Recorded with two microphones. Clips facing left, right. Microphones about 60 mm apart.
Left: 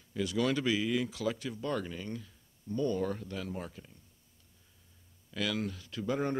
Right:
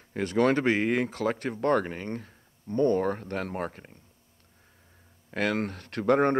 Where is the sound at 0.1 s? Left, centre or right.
Right.